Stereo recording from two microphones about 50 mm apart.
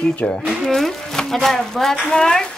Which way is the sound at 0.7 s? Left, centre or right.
Centre.